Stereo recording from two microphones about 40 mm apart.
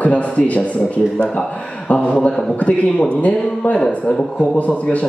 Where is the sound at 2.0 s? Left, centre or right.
Left.